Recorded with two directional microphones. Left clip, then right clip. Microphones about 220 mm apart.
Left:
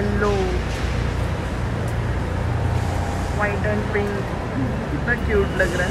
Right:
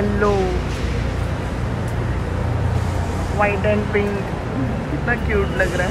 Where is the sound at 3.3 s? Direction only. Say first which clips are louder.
Right 6 dB; centre (ahead or behind).